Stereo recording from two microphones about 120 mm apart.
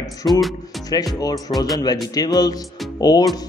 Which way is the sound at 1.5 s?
50° left (ahead or behind).